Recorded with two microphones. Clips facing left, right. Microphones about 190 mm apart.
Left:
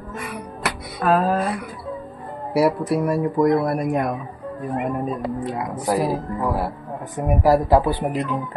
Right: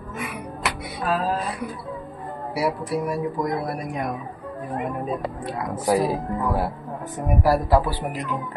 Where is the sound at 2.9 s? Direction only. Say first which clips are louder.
Left 5 dB; 60° left (ahead or behind).